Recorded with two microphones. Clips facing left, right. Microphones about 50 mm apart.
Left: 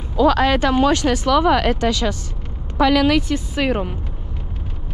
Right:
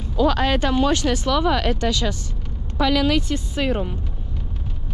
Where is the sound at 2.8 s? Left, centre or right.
Left.